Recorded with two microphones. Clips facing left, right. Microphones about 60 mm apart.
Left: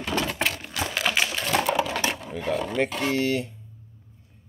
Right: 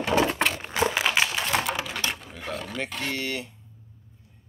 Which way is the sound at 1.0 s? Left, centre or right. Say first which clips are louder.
Right 1 dB; centre.